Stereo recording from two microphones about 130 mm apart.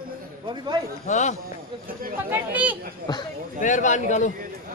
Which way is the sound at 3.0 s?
35° left (ahead or behind).